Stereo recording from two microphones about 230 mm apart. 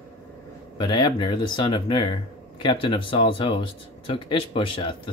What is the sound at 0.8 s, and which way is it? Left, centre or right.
Speech, centre.